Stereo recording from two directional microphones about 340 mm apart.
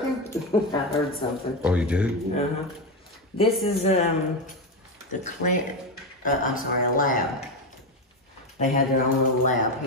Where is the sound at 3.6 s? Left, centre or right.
Centre.